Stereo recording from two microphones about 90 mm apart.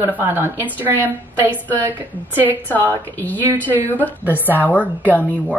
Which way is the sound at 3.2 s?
20° left (ahead or behind).